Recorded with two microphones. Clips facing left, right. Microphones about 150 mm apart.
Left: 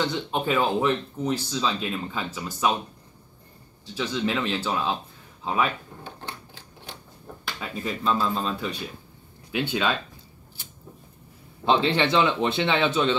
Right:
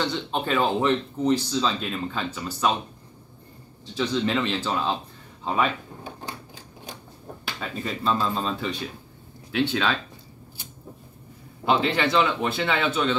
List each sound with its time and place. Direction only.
0.0 s speech: 10° left (ahead or behind)
3.8 s speech: 5° left (ahead or behind)
6.0 s a sound: 15° right (ahead or behind)
7.6 s speech: 5° left (ahead or behind)
9.5 s speech: 10° left (ahead or behind)
11.6 s a man's voice: 25° left (ahead or behind)